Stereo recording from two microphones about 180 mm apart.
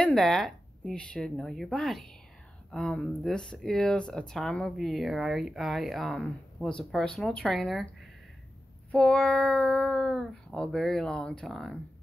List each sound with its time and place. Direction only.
0.0 s speech: centre (ahead or behind)